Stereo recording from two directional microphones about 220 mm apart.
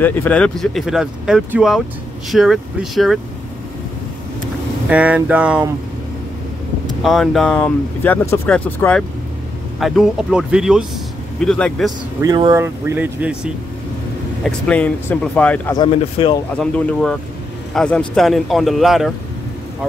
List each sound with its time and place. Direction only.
0.0 s speech: 10° left (ahead or behind)
4.8 s speech: 5° right (ahead or behind)
7.0 s speech: centre (ahead or behind)
12.2 s speech: 15° right (ahead or behind)
14.4 s speech: 5° left (ahead or behind)
15.7 s speech: 20° left (ahead or behind)
16.5 s speech: 5° left (ahead or behind)